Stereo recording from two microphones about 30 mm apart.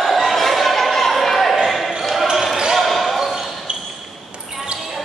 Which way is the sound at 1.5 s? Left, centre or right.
Centre.